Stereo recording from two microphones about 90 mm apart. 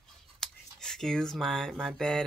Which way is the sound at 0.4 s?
5° left (ahead or behind).